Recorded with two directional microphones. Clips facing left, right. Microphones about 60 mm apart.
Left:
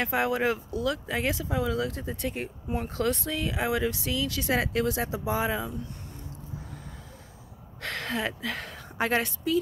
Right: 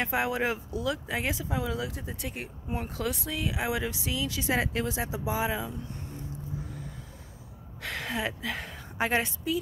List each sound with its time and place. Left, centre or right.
0.0 s speech: centre
7.8 s a woman's voice: centre